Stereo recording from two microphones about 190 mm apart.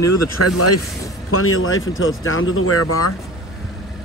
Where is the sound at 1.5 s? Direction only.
90° left.